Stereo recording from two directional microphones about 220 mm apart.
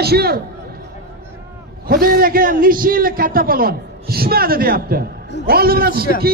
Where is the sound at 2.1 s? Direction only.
40° right (ahead or behind).